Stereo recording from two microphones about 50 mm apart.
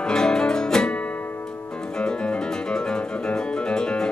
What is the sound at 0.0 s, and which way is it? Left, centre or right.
Music, centre.